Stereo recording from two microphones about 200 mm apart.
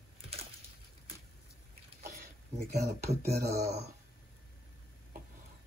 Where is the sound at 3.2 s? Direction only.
55° right (ahead or behind).